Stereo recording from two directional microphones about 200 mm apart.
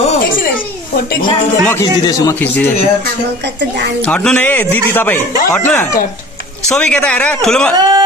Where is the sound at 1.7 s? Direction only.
15° left (ahead or behind).